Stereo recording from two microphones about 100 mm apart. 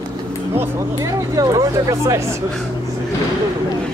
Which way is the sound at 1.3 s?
35° right (ahead or behind).